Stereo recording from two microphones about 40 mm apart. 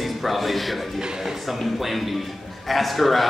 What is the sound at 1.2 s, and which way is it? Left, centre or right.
Speech, centre.